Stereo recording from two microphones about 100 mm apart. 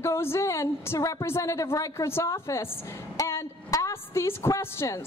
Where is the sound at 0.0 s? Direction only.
25° left (ahead or behind).